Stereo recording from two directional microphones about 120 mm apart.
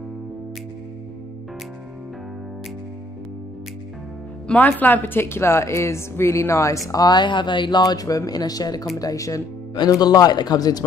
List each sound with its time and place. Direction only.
4.5 s speech: 15° left (ahead or behind); by 10.8 s 35° left (ahead or behind)